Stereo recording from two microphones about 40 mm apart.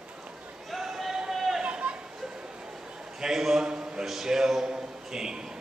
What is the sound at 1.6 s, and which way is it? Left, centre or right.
Chatter, right.